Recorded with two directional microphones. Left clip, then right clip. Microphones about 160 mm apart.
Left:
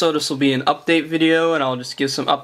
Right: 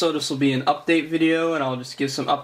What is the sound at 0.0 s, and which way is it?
Speech, 30° left (ahead or behind).